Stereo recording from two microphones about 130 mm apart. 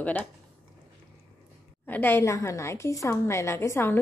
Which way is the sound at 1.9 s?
15° left (ahead or behind).